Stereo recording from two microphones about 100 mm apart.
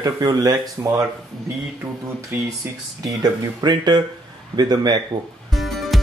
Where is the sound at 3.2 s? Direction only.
45° right (ahead or behind).